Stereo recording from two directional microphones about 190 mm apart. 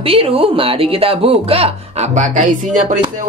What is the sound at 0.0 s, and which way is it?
Speech, 30° right (ahead or behind).